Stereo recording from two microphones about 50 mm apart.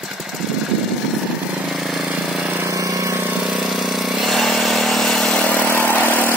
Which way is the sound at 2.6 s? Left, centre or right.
Right.